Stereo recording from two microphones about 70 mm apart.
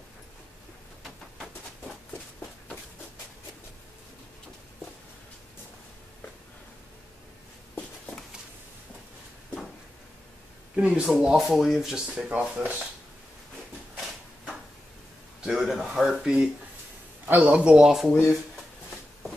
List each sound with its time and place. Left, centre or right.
11.1 s speech: centre
12.3 s speech: right
15.4 s a man's voice: centre
17.3 s speech: right
17.6 s speech: centre
17.9 s speech: centre